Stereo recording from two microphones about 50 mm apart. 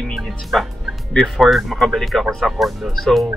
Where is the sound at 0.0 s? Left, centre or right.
Centre.